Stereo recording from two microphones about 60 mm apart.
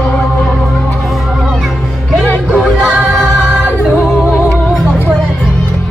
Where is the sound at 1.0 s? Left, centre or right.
Centre.